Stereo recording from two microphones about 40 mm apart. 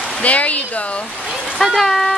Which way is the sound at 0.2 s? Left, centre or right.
Left.